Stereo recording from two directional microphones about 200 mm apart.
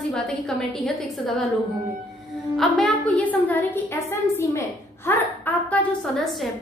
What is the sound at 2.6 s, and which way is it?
A woman's voice, 5° left (ahead or behind).